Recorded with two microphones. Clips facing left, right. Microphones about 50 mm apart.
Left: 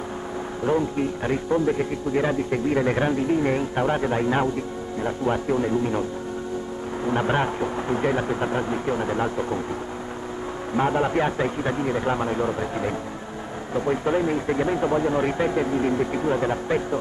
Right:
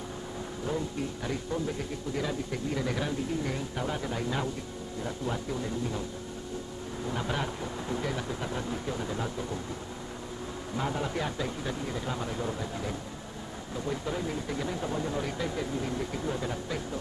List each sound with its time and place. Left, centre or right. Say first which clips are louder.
0.7 s speech: left 11 dB; left
7.1 s speech: left 10 dB; left
10.8 s speech: left 11 dB; left